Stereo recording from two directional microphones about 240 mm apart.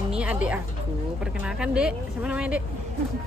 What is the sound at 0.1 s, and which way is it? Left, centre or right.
Bird, centre.